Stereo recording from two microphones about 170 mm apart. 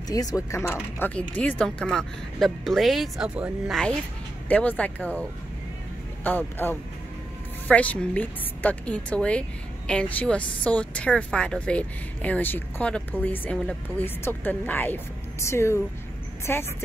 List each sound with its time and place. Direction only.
0.1 s speech: 20° left (ahead or behind); by 3.8 s 5° right (ahead or behind)
4.5 s speech: 10° left (ahead or behind)
6.2 s speech: 10° left (ahead or behind)